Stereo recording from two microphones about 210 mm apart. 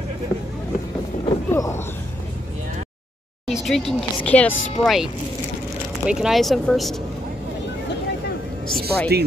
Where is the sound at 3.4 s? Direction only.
Centre (ahead or behind).